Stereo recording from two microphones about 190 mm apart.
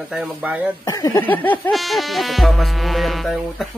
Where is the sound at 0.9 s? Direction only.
20° left (ahead or behind); by 3.7 s centre (ahead or behind).